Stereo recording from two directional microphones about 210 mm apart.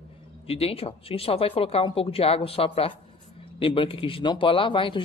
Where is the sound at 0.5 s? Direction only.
30° left (ahead or behind).